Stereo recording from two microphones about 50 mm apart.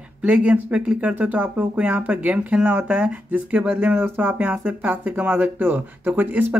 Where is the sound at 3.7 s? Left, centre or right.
Right.